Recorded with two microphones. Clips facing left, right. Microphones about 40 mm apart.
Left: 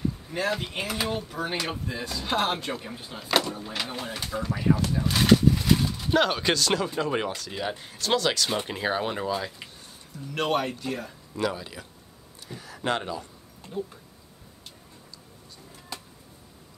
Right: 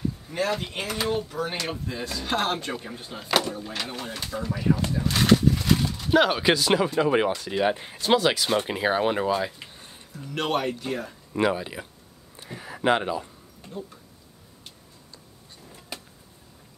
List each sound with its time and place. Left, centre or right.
0.3 s speech: centre
3.9 s speech: centre
4.2 s speech: centre
10.3 s speech: centre
11.3 s speech: right